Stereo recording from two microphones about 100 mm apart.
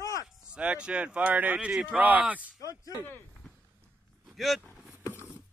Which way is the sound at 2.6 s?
35° left (ahead or behind).